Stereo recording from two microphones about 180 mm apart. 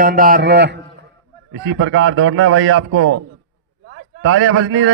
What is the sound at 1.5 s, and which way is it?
A man's voice, 90° right.